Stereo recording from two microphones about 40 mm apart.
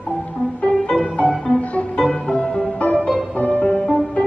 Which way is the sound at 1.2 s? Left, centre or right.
Left.